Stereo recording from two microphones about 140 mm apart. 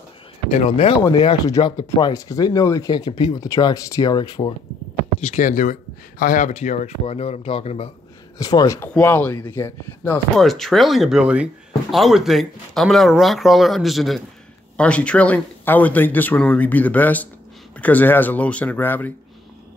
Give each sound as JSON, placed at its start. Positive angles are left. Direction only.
{"t": 0.5, "sound": "speech", "side_deg": 45}
{"t": 1.2, "sound": "speech", "side_deg": 30}
{"t": 5.2, "sound": "speech", "side_deg": 60}
{"t": 7.1, "sound": "speech", "side_deg": 45}
{"t": 8.4, "sound": "speech", "side_deg": 25}
{"t": 10.3, "sound": "speech", "side_deg": 0}